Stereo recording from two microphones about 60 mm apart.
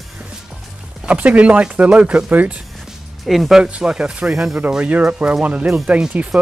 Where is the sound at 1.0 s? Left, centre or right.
Right.